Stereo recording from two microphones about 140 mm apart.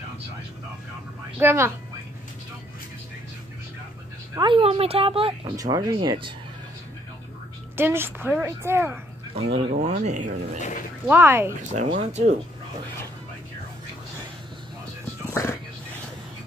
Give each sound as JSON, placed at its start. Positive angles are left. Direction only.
{"t": 1.4, "sound": "a woman's voice", "side_deg": -20}
{"t": 4.4, "sound": "speech", "side_deg": -40}
{"t": 5.6, "sound": "speech", "side_deg": -25}
{"t": 7.7, "sound": "a woman's voice", "side_deg": -15}
{"t": 9.3, "sound": "speech", "side_deg": -45}
{"t": 11.1, "sound": "a woman's voice", "side_deg": -15}
{"t": 11.7, "sound": "speech", "side_deg": -60}